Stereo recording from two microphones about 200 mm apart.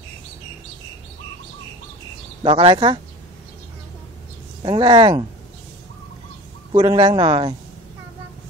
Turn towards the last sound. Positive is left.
turn(degrees=-25)  # may be behind; listen again after turning